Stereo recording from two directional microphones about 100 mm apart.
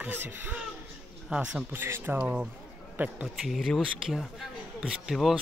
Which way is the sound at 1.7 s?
20° right (ahead or behind).